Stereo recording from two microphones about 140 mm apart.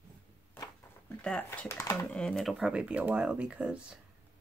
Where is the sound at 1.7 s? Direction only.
20° left (ahead or behind).